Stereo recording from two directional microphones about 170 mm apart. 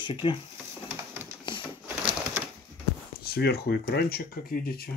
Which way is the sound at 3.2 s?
70° left (ahead or behind).